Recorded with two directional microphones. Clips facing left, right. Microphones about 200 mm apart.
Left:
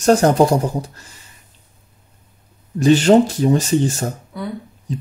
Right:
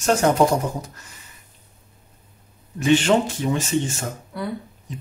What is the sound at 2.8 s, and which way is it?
Speech, 40° left (ahead or behind).